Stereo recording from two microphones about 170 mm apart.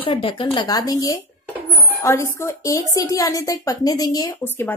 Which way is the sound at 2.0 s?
15° left (ahead or behind).